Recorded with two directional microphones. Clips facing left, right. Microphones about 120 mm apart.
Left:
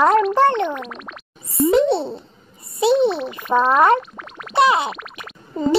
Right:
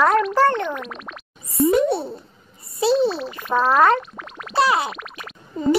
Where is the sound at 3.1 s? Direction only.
Centre (ahead or behind).